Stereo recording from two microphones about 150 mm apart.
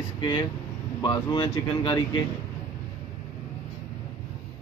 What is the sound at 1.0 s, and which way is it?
Speech, 30° left (ahead or behind).